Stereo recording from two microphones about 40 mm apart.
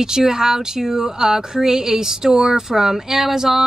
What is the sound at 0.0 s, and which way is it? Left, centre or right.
Speech, centre.